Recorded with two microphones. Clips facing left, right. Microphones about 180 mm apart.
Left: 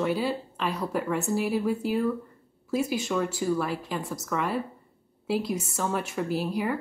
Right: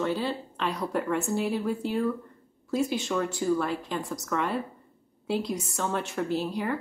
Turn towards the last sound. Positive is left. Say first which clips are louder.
# left 1 dB
turn(degrees=10)  # may be behind; listen again after turning